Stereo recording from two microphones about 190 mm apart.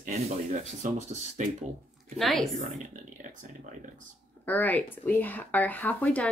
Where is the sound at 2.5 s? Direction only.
40° right (ahead or behind).